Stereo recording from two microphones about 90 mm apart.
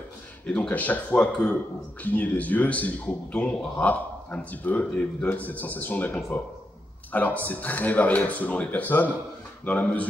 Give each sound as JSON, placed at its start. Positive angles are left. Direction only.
{"t": 0.5, "sound": "a man's voice", "side_deg": 15}